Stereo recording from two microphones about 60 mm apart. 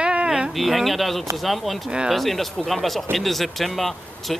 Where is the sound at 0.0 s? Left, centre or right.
Centre.